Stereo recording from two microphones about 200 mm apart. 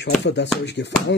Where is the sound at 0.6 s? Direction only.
60° left (ahead or behind).